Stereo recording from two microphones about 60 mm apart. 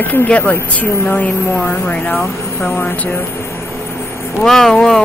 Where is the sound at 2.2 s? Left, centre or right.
Centre.